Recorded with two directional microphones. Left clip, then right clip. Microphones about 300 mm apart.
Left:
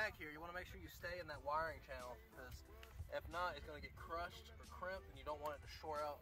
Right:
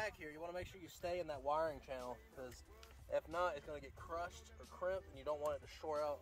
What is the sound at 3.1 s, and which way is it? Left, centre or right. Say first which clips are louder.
Speech: right 5 dB; right.